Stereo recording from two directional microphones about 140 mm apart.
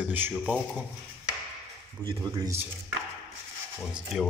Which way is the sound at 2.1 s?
25° right (ahead or behind).